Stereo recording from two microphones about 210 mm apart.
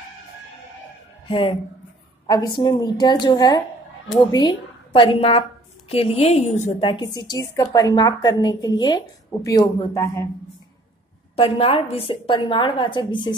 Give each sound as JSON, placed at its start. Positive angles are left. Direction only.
{"t": 2.2, "sound": "a woman's voice", "side_deg": 20}
{"t": 11.3, "sound": "a woman's voice", "side_deg": 25}